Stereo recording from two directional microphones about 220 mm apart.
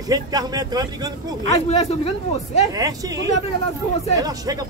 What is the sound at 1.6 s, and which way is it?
Speech, 30° left (ahead or behind).